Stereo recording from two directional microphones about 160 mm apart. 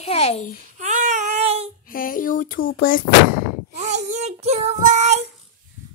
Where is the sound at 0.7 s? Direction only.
50° right (ahead or behind).